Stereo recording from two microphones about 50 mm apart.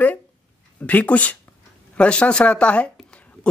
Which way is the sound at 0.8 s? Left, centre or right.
Left.